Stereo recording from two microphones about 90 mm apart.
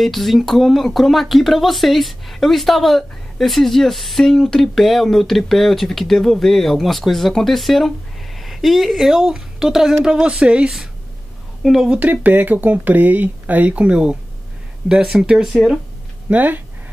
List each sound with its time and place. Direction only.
0.0 s speech: centre (ahead or behind)
12.0 s speech: 20° right (ahead or behind); by 15.8 s 5° right (ahead or behind)
16.3 s speech: 20° right (ahead or behind)